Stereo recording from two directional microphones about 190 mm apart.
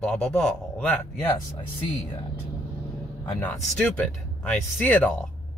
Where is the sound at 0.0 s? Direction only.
5° left (ahead or behind).